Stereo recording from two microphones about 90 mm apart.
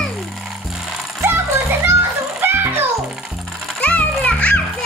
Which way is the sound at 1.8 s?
25° right (ahead or behind).